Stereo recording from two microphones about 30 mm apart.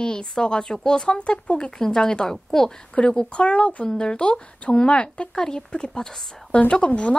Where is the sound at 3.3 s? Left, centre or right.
Left.